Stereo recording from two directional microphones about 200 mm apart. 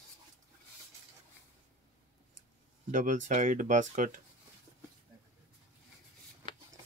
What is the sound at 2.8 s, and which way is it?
Speech, 40° right (ahead or behind).